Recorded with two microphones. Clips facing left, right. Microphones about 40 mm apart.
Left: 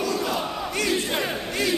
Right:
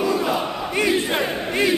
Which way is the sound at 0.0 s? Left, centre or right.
Centre.